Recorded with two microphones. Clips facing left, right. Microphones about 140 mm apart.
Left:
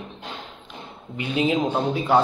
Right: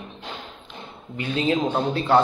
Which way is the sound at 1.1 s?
15° left (ahead or behind).